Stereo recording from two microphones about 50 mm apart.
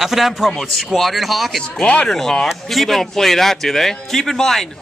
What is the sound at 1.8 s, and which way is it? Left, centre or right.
Speech, left.